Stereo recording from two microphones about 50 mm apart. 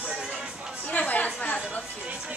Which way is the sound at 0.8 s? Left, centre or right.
Left.